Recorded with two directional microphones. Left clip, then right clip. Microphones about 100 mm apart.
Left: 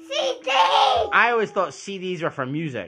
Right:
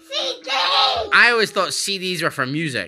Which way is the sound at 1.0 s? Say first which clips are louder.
Right 4 dB; 20° right (ahead or behind).